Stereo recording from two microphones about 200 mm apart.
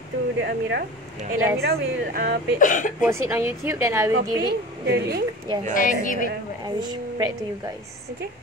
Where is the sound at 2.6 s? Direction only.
40° left (ahead or behind).